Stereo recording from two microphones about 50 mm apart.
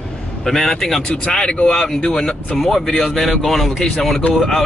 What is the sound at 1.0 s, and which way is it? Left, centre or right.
A man's voice, centre.